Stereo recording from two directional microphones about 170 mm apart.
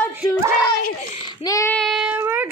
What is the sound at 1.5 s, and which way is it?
Child singing, 20° left (ahead or behind).